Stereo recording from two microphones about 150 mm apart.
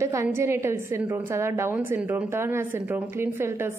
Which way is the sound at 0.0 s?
20° right (ahead or behind).